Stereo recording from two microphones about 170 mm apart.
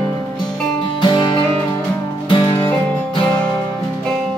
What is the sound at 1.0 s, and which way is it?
Music, 25° left (ahead or behind).